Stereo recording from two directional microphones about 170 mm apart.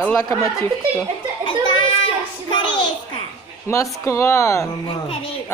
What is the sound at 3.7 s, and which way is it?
Speech, 15° left (ahead or behind).